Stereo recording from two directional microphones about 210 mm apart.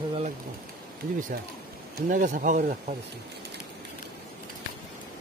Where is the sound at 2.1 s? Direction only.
40° right (ahead or behind).